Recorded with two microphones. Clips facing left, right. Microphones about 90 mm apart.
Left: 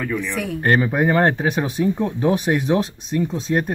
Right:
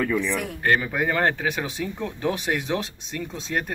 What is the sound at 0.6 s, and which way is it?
Speech, 35° left (ahead or behind).